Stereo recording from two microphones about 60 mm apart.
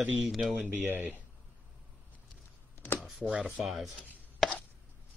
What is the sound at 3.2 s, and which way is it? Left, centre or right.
Speech, centre.